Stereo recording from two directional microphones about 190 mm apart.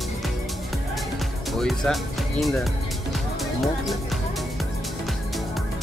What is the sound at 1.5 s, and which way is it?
Speech, centre (ahead or behind).